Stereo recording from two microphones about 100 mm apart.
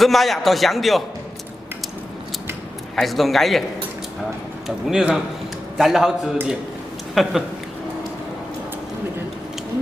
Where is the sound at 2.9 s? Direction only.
Centre (ahead or behind).